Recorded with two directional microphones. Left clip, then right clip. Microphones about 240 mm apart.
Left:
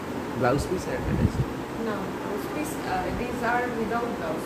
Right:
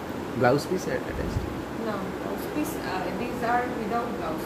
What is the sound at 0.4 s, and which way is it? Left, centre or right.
Speech, centre.